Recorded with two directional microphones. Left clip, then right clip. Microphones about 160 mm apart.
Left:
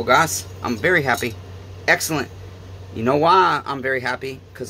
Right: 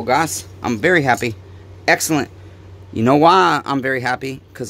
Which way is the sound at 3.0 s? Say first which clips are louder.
Right 3 dB; 90° right.